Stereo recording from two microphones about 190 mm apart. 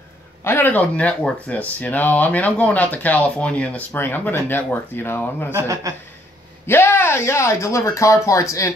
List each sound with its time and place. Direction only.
0.4 s speech: 10° left (ahead or behind)
5.5 s a man's voice: 15° right (ahead or behind)
6.6 s speech: 10° left (ahead or behind)